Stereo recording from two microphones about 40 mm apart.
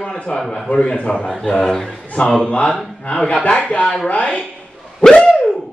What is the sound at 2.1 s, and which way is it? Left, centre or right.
A man's voice, left.